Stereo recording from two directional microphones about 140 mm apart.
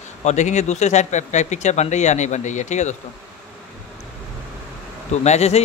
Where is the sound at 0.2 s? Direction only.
55° left (ahead or behind).